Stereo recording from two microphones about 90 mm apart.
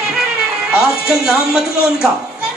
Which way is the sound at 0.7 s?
5° right (ahead or behind).